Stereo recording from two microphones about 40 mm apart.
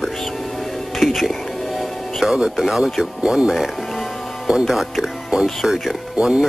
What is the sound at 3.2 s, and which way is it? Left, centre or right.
Speech, centre.